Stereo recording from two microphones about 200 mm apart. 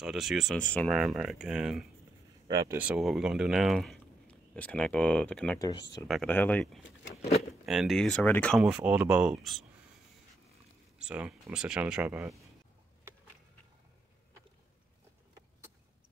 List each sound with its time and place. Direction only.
0.0 s speech: centre (ahead or behind)
2.4 s speech: 20° right (ahead or behind)
2.8 s speech: 5° right (ahead or behind)
7.2 s speech: 30° left (ahead or behind)
7.6 s speech: centre (ahead or behind)
8.6 s speech: 5° right (ahead or behind)
11.0 s speech: 5° right (ahead or behind)